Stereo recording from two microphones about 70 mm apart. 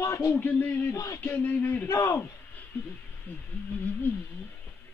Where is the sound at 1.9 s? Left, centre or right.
Left.